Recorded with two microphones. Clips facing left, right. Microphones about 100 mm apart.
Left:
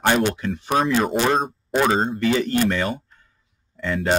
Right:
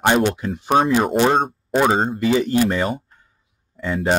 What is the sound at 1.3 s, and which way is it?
Speech, centre (ahead or behind).